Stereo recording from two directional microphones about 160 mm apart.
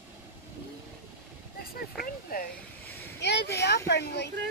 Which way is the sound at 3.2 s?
90° left.